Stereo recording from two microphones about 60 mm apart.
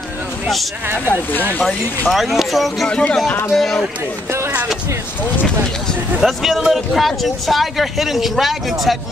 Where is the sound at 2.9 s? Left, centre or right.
Left.